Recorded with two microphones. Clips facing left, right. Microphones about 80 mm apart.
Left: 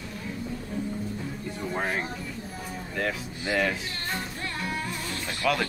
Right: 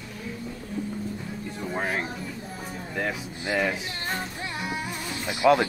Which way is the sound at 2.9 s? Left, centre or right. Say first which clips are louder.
Even; centre.